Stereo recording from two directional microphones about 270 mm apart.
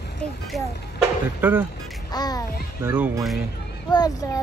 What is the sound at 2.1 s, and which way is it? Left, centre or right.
Speech, centre.